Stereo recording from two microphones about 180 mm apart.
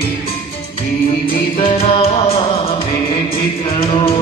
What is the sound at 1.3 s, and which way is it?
Music, 30° left (ahead or behind).